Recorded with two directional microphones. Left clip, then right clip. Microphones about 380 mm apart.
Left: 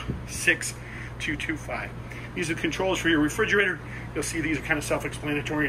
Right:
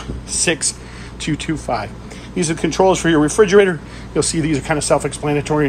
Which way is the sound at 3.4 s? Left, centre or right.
Right.